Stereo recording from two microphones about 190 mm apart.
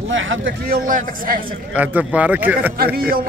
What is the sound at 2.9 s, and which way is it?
Speech, 50° right (ahead or behind).